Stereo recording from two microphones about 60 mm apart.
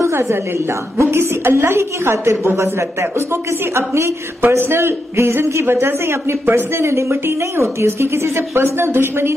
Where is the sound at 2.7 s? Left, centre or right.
Right.